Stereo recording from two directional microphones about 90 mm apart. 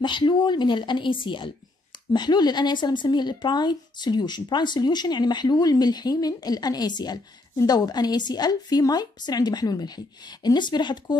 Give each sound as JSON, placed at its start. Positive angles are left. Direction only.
{"t": 0.0, "sound": "a woman's voice", "side_deg": 60}
{"t": 2.1, "sound": "speech", "side_deg": 50}